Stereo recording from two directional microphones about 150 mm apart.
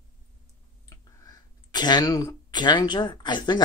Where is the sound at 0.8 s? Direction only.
25° left (ahead or behind).